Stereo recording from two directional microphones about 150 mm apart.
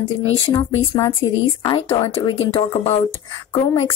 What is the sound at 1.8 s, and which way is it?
A woman's voice, 40° left (ahead or behind).